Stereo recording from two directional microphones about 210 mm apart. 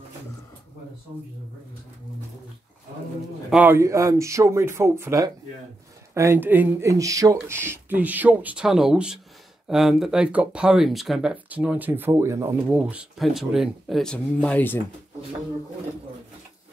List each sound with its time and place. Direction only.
1.1 s speech: 25° right (ahead or behind)
3.4 s speech: 5° right (ahead or behind)